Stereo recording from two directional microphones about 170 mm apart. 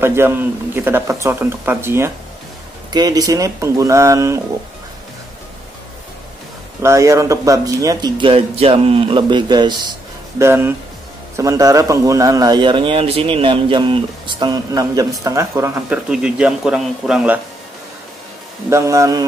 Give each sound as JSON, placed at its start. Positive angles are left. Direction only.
{"t": 0.0, "sound": "a man's voice", "side_deg": -15}
{"t": 6.8, "sound": "a man's voice", "side_deg": -15}
{"t": 10.4, "sound": "a man's voice", "side_deg": -15}
{"t": 16.1, "sound": "a man's voice", "side_deg": -5}
{"t": 18.7, "sound": "a man's voice", "side_deg": -15}